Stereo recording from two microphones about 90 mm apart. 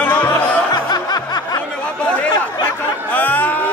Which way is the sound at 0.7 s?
45° left (ahead or behind).